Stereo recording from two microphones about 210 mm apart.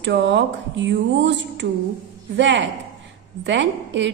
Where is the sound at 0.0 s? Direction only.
60° right (ahead or behind).